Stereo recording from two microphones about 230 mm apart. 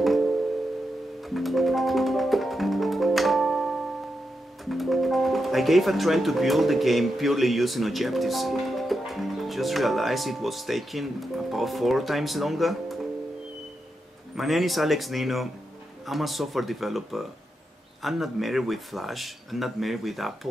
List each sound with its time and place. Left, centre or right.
1.2 s music: centre
4.6 s speech: centre
14.3 s speech: centre